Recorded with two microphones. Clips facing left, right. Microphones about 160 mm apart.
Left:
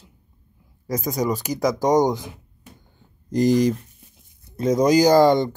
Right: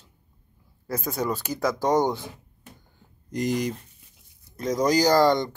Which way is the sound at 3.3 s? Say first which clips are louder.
Left 8 dB; 35° left (ahead or behind).